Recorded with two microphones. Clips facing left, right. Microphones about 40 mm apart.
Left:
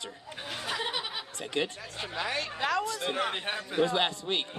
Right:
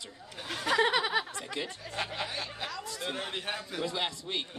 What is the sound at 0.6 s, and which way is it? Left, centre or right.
Speech, right.